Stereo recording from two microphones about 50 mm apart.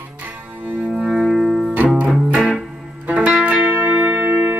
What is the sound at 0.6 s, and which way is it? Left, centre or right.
Cello, right.